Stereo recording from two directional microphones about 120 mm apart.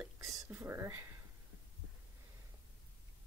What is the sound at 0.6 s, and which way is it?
Speech, 20° right (ahead or behind).